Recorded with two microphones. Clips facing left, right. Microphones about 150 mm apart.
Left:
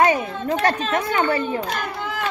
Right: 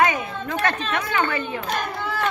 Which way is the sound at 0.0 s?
35° left (ahead or behind).